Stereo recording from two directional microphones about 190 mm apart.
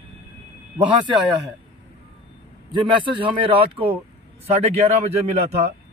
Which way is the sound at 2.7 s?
25° right (ahead or behind).